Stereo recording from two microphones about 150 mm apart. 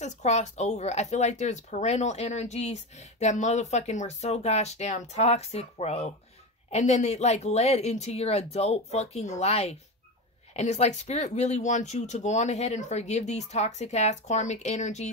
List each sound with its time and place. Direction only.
0.0 s speech: 50° left (ahead or behind)